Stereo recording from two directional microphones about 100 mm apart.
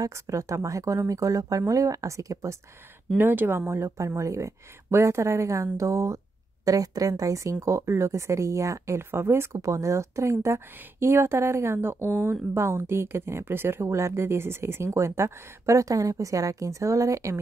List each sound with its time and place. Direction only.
0.0 s speech: 30° right (ahead or behind)
3.2 s speech: 20° right (ahead or behind)